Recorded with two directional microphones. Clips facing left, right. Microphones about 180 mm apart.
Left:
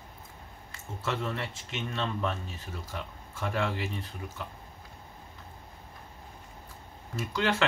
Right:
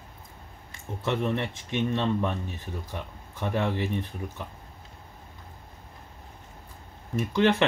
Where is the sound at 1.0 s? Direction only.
20° right (ahead or behind).